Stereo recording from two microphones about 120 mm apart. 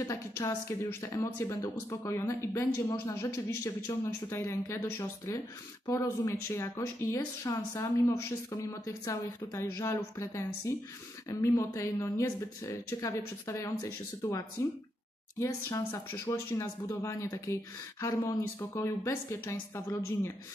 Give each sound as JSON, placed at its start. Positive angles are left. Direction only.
{"t": 0.0, "sound": "speech", "side_deg": 25}